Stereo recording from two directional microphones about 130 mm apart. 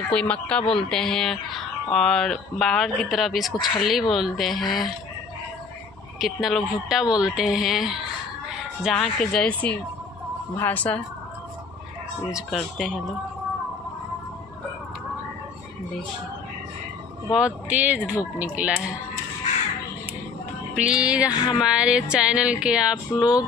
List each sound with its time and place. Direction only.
0.1 s speech: 10° left (ahead or behind)
6.1 s speech: centre (ahead or behind)
12.3 s speech: 5° right (ahead or behind)
17.3 s music: 10° right (ahead or behind)
20.7 s music: 10° right (ahead or behind)
21.3 s a sound: 35° left (ahead or behind)
21.5 s music: 5° right (ahead or behind)